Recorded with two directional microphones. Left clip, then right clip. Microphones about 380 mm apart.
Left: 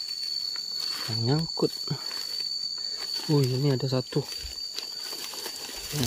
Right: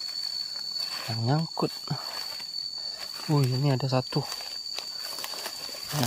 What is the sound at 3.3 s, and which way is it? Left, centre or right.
Speech, centre.